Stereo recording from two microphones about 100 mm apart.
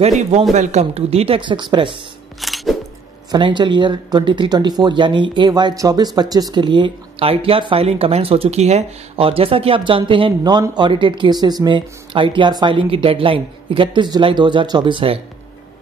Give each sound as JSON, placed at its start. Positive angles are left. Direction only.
{"t": 0.0, "sound": "speech", "side_deg": -90}
{"t": 1.4, "sound": "speech", "side_deg": -50}
{"t": 2.4, "sound": "music", "side_deg": 0}
{"t": 3.3, "sound": "speech", "side_deg": -50}